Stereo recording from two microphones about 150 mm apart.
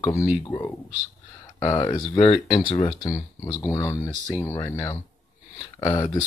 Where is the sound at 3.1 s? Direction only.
20° left (ahead or behind).